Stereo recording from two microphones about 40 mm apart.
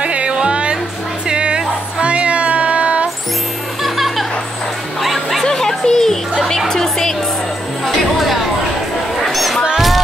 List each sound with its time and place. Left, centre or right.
0.0 s music: right
3.8 s music: centre
5.4 s music: centre
7.8 s music: centre
9.2 s a sound: centre